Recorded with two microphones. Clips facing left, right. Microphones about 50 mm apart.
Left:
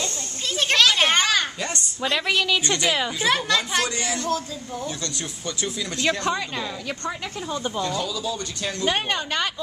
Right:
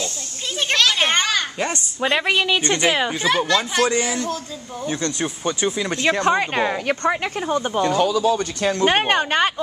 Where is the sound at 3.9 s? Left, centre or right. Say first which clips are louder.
Right 6 dB; right.